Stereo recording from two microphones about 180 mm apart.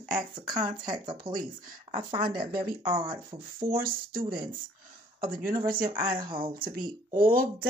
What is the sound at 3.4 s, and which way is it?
Speech, 55° right (ahead or behind).